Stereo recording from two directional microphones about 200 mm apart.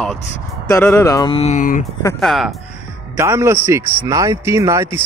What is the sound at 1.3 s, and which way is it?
Speech, 35° left (ahead or behind).